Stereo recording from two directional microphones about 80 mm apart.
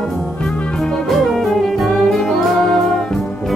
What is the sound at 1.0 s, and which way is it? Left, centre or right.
Music, centre.